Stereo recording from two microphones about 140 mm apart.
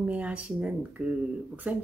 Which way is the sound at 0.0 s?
10° right (ahead or behind).